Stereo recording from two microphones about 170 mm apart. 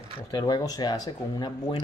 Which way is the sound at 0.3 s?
25° left (ahead or behind).